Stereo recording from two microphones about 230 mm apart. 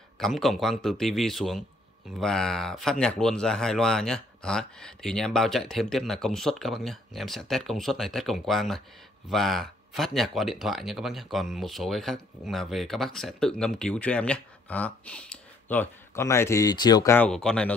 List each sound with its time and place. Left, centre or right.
0.2 s speech: centre